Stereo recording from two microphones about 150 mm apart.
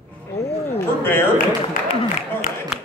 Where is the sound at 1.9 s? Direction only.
45° left (ahead or behind).